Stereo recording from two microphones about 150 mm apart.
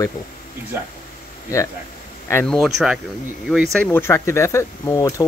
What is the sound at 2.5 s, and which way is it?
Speech, centre (ahead or behind).